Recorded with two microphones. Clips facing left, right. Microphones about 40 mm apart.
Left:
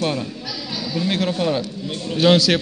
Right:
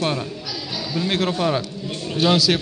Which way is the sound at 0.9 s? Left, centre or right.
Centre.